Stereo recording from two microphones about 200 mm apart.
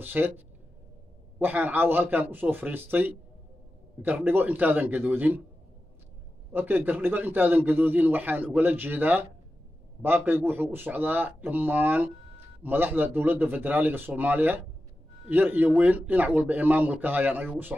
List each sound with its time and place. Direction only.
0.0 s speech: 10° right (ahead or behind)
1.4 s speech: 10° right (ahead or behind)
6.5 s speech: 10° right (ahead or behind)